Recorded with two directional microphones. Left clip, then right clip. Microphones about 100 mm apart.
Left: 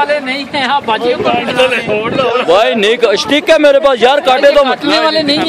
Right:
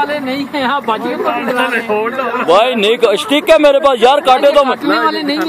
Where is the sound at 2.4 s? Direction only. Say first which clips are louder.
Right 2 dB; 40° left (ahead or behind); by 5.4 s 90° left.